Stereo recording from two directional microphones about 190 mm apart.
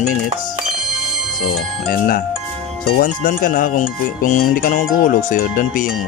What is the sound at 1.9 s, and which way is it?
Speech, 50° left (ahead or behind).